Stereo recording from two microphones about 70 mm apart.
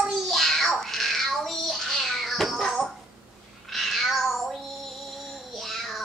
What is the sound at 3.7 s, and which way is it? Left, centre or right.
Child singing, centre.